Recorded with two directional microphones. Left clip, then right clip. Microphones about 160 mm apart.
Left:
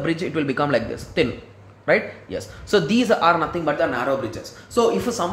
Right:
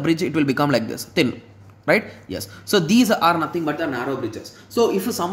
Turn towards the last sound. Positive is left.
turn(degrees=-25)  # may be behind; listen again after turning